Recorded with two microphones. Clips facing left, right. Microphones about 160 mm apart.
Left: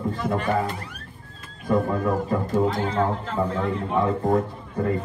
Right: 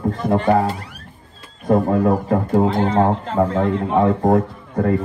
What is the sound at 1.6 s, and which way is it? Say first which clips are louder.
A man's voice: right 6 dB; 70° right (ahead or behind).